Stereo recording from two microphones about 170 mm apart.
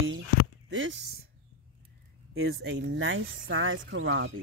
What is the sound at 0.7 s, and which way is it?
Speech, 90° right.